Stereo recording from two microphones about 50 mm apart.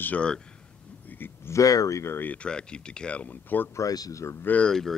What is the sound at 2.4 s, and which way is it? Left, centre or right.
Speech, centre.